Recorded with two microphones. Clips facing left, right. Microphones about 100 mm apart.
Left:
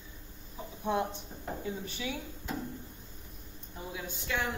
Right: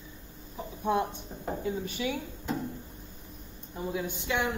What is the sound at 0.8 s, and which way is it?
Speech, 15° right (ahead or behind).